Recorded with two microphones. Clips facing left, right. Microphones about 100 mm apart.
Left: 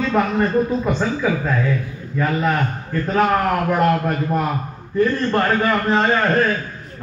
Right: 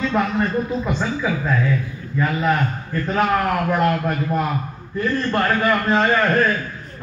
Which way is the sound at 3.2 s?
35° left (ahead or behind).